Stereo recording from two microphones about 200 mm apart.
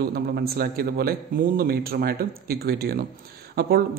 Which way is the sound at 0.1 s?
50° right (ahead or behind).